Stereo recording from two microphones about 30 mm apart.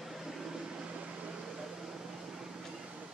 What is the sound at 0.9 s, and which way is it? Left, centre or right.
Microwave oven, right.